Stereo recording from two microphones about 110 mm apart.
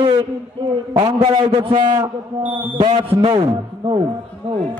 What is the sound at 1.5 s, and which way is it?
Speech, 55° right (ahead or behind).